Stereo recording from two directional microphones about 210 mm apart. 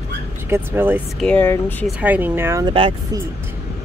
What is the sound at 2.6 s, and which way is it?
Speech, 25° right (ahead or behind).